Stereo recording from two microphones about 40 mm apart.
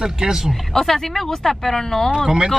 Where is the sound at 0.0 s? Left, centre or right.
Centre.